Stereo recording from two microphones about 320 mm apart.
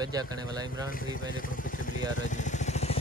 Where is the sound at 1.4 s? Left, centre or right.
Left.